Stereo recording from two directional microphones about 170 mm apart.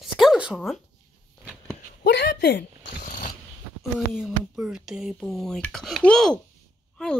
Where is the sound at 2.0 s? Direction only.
85° left.